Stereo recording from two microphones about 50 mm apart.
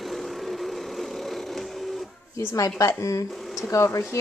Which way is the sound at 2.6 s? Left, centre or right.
Left.